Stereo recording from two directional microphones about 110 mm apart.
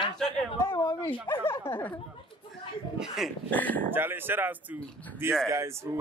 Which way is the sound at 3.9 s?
20° right (ahead or behind).